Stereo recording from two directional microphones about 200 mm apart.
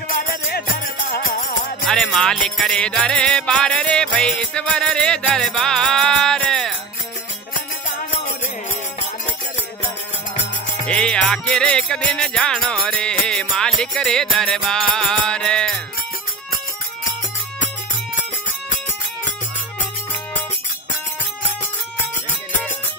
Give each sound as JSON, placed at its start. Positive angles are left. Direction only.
{"t": 0.1, "sound": "music", "side_deg": 50}
{"t": 1.9, "sound": "music", "side_deg": 5}
{"t": 10.9, "sound": "music", "side_deg": 5}